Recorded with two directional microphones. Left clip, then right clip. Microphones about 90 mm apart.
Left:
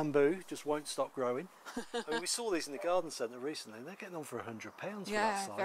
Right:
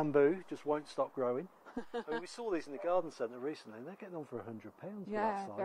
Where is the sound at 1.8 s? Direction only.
10° left (ahead or behind); by 4.9 s 30° left (ahead or behind).